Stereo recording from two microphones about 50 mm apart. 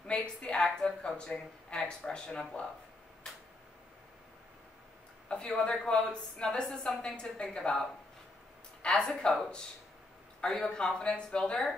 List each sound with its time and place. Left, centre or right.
0.0 s a woman's voice: left
0.6 s a woman's voice: centre
1.0 s a woman's voice: centre
5.3 s a woman's voice: left
9.0 s a woman's voice: centre
10.4 s a woman's voice: centre